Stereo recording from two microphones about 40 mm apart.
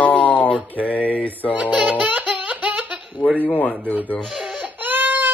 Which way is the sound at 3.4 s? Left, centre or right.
Left.